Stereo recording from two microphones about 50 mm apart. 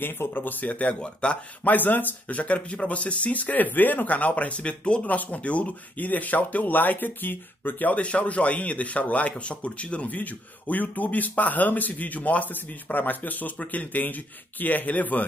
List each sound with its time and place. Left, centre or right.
0.0 s speech: left
1.7 s speech: left